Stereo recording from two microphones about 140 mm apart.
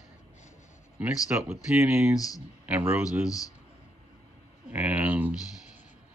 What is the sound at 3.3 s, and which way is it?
Speech, 25° left (ahead or behind).